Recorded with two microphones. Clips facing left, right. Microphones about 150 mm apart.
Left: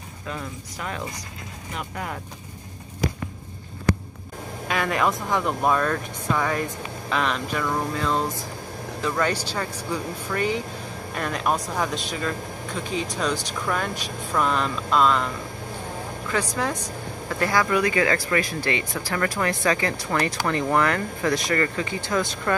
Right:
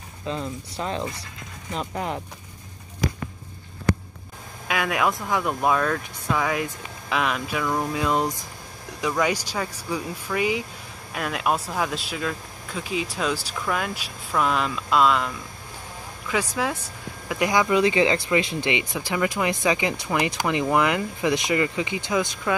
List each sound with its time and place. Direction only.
0.3 s speech: 25° right (ahead or behind)
4.6 s speech: 5° right (ahead or behind)
16.3 s speech: 10° right (ahead or behind)